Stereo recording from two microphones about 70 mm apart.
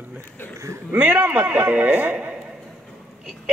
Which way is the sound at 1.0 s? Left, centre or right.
Right.